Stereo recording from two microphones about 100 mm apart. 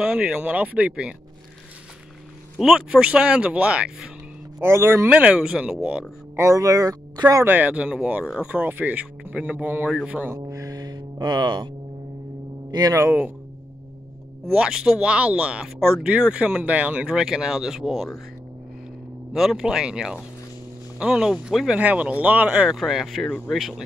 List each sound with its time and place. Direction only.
0.0 s speech: 10° right (ahead or behind)
2.6 s speech: 5° right (ahead or behind)
4.6 s speech: 25° right (ahead or behind)
5.1 s speech: 10° right (ahead or behind)
6.3 s speech: 30° right (ahead or behind)
7.4 s speech: 15° right (ahead or behind)
10.5 s music: 35° right (ahead or behind)
12.7 s speech: 40° right (ahead or behind)
14.5 s speech: 5° right (ahead or behind)
19.3 s speech: 5° right (ahead or behind)
21.7 s speech: 15° right (ahead or behind)
22.8 s speech: centre (ahead or behind)